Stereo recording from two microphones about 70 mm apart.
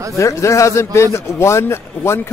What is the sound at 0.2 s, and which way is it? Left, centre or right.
A man's voice, left.